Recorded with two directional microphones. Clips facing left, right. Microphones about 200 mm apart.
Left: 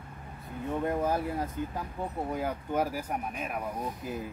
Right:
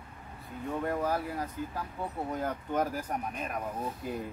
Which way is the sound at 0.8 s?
20° left (ahead or behind).